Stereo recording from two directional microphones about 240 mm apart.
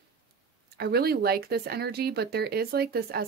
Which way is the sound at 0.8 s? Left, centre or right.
Right.